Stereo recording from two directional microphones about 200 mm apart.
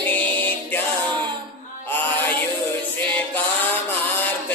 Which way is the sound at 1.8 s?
10° left (ahead or behind).